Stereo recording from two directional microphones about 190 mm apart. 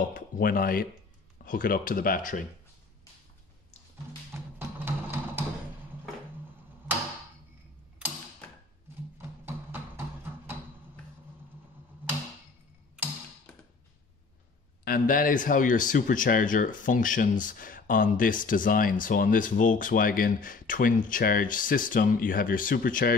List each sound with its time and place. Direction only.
0.1 s speech: 50° left (ahead or behind)
4.3 s music: 10° right (ahead or behind)
9.5 s music: 10° right (ahead or behind)
14.9 s speech: 45° left (ahead or behind)